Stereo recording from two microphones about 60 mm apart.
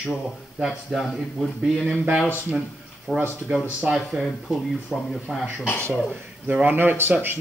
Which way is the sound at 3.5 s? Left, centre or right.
Centre.